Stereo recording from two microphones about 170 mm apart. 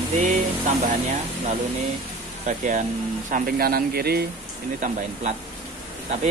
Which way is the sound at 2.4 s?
50° right (ahead or behind).